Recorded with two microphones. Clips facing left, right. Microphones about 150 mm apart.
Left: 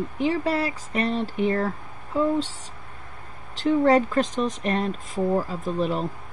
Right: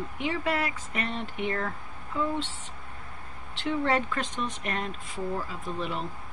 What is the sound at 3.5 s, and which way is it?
Speech, 40° left (ahead or behind).